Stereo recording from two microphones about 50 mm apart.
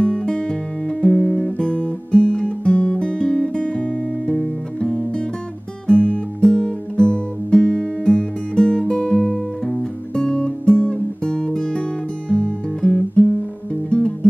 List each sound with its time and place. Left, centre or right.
0.0 s guitar: centre
1.7 s music: centre